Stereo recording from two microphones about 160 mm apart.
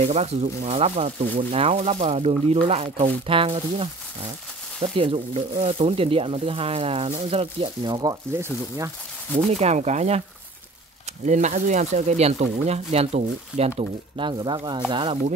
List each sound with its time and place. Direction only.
0.0 s speech: 40° right (ahead or behind)
4.9 s speech: 35° right (ahead or behind); by 8.9 s 15° right (ahead or behind)
9.5 s speech: 45° right (ahead or behind)
11.2 s speech: 50° right (ahead or behind); by 15.1 s 30° right (ahead or behind)